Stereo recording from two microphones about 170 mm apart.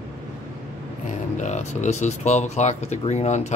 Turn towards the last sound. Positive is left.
turn(degrees=45)  # may be behind; listen again after turning